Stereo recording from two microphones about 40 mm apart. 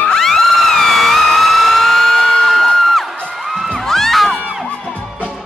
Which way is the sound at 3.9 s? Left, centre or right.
Centre.